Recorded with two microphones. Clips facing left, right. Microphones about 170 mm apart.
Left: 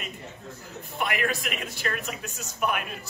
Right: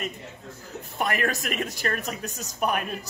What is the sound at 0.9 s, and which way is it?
A woman's voice, 45° right (ahead or behind).